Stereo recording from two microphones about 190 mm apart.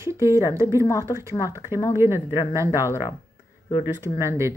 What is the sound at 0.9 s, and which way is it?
Speech, 15° left (ahead or behind).